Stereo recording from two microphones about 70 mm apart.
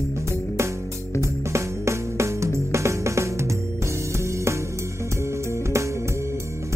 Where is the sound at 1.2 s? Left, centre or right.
Right.